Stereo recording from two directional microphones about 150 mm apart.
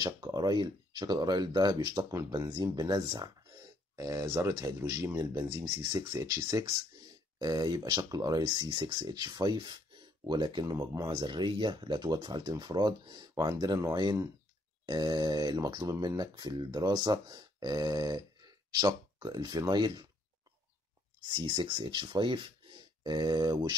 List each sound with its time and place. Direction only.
0.0 s speech: 25° right (ahead or behind)
21.3 s speech: 30° right (ahead or behind)